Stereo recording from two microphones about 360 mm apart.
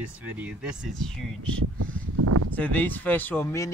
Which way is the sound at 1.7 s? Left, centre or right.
Right.